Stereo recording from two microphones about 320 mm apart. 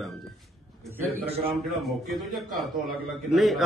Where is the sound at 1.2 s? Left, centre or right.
Centre.